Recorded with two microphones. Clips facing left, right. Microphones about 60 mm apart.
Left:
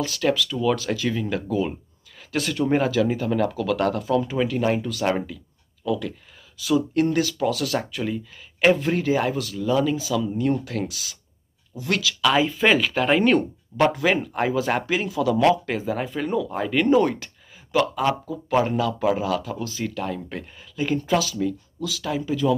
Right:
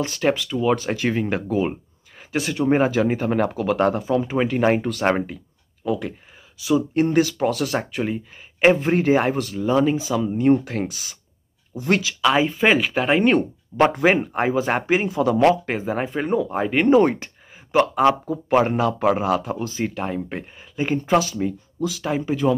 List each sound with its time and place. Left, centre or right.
0.0 s speech: right
2.3 s speech: centre
4.3 s speech: right
4.6 s speech: right
6.6 s speech: centre
12.2 s speech: centre
13.9 s speech: right